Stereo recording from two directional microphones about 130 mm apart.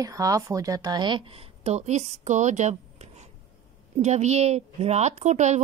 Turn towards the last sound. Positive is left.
turn(degrees=-65)  # may be behind; listen again after turning